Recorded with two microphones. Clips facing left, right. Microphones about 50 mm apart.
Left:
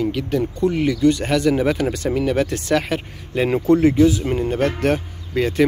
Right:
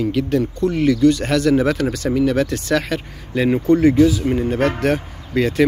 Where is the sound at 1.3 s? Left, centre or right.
Centre.